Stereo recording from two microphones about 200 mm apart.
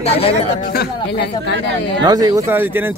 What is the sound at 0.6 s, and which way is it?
Speech, 45° left (ahead or behind).